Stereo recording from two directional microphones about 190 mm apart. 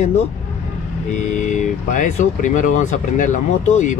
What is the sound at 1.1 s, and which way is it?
Speech, 40° left (ahead or behind).